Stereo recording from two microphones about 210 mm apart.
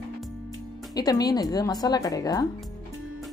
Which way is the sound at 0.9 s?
20° left (ahead or behind).